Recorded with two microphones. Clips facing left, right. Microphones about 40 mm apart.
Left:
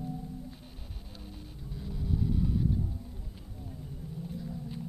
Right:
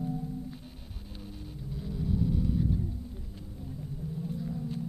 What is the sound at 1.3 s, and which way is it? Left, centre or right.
Vehicle, centre.